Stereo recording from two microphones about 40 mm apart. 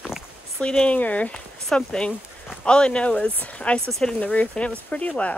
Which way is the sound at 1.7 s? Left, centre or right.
Centre.